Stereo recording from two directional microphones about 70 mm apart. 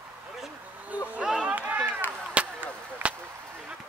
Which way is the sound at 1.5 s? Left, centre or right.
Right.